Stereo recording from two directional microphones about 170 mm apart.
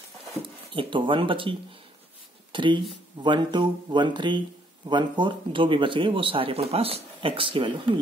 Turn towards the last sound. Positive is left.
turn(degrees=-30)  # may be behind; listen again after turning